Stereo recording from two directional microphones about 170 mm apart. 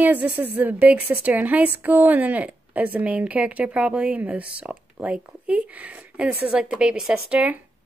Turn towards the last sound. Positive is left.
turn(degrees=-10)  # may be behind; listen again after turning